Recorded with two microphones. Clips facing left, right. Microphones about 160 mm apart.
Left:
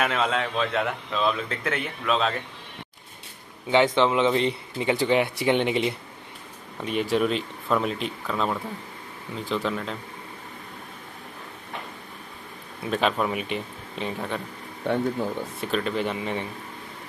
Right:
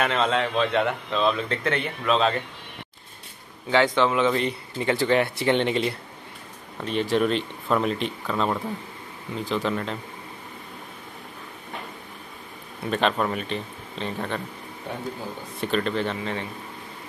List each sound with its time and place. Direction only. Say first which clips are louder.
0.0 s speech: right 2 dB; 5° left (ahead or behind)
3.7 s speech: left 1 dB; 20° left (ahead or behind); by 9.9 s centre (ahead or behind)
12.8 s speech: right 1 dB; 5° left (ahead or behind)
15.6 s speech: right 2 dB; 5° left (ahead or behind)